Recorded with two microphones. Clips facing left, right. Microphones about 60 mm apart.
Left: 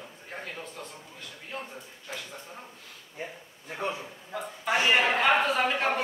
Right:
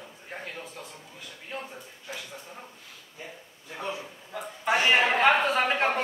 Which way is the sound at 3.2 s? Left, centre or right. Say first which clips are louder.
Left 4 dB; left.